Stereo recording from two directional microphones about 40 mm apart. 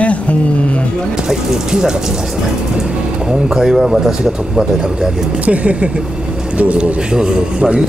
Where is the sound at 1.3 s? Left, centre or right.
Centre.